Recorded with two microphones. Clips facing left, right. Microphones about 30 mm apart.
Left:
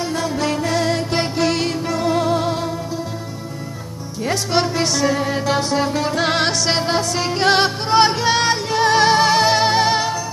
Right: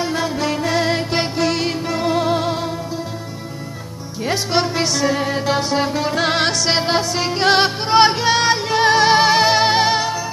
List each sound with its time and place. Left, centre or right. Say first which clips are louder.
0.0 s music: right 1 dB; centre
1.4 s music: left 1 dB; centre
1.7 s music: even; centre
4.2 s music: even; centre
6.8 s music: right 1 dB; centre